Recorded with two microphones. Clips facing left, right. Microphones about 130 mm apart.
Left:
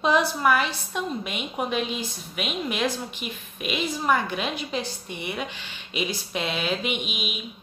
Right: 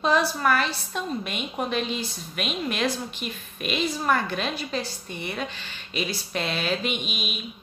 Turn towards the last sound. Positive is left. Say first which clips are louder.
# even
turn(degrees=15)  # may be behind; listen again after turning